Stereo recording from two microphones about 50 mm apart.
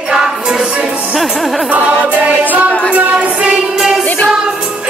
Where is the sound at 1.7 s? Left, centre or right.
Right.